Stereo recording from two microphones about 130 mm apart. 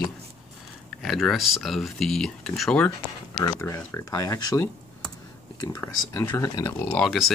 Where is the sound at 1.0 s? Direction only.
Centre (ahead or behind).